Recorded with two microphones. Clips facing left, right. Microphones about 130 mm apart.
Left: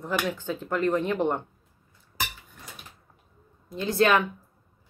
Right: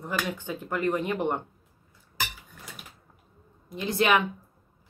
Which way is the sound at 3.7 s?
15° right (ahead or behind).